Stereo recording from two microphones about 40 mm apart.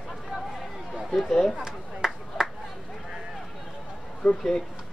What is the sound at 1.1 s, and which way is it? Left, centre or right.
Speech, centre.